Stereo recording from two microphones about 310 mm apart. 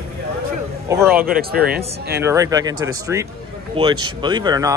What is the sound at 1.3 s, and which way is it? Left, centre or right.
Speech, right.